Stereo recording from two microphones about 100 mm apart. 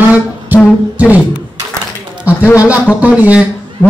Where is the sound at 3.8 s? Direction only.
25° left (ahead or behind).